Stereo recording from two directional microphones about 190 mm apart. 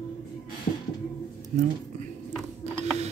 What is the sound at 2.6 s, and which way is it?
Mechanisms, 35° right (ahead or behind).